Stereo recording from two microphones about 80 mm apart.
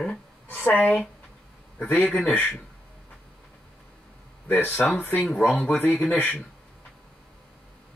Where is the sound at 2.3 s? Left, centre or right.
Left.